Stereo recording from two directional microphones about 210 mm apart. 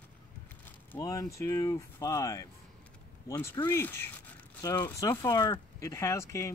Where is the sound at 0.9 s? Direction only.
15° left (ahead or behind).